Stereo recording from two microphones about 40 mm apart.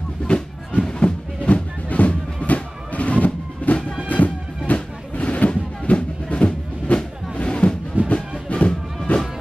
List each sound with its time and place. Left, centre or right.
0.3 s music: left